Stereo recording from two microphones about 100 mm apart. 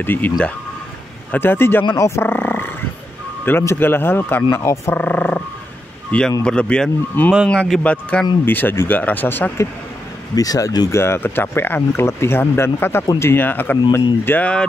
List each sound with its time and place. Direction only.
0.0 s speech: 20° left (ahead or behind)
1.3 s speech: 20° left (ahead or behind)
4.9 s speech: 15° left (ahead or behind)
10.3 s speech: 40° left (ahead or behind)
10.9 s speech: 25° left (ahead or behind)